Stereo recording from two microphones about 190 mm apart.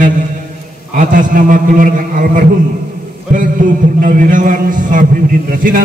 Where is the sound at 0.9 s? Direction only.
45° right (ahead or behind).